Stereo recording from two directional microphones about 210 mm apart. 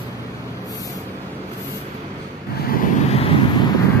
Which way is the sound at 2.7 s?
40° left (ahead or behind).